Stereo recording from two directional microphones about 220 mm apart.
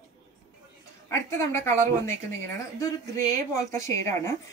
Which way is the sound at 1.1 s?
10° left (ahead or behind).